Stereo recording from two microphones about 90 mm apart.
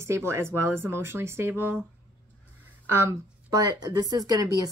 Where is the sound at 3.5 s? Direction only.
50° right (ahead or behind).